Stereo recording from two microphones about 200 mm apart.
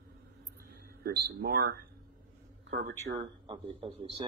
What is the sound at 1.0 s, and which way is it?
Speech, 50° right (ahead or behind).